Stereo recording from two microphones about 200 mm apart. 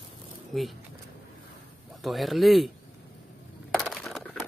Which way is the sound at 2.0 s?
Centre (ahead or behind).